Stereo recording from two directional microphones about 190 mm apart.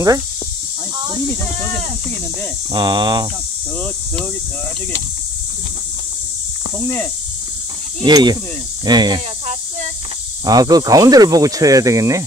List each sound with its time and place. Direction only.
2.7 s speech: 25° right (ahead or behind)
8.0 s speech: 20° right (ahead or behind)
10.4 s speech: 20° right (ahead or behind)